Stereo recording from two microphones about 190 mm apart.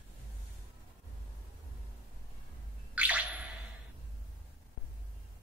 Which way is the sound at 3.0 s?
5° right (ahead or behind).